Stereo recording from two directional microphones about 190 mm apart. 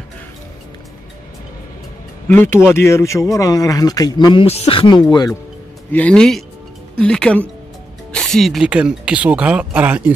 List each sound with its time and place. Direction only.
2.2 s speech: 10° left (ahead or behind)
5.9 s speech: 10° left (ahead or behind); by 10.1 s 10° right (ahead or behind)